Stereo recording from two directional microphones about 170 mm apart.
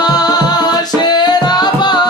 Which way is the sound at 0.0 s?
20° left (ahead or behind).